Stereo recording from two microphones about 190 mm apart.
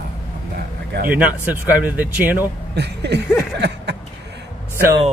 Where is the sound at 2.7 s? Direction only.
60° right (ahead or behind).